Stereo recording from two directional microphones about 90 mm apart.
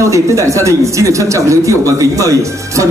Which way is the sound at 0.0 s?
35° right (ahead or behind).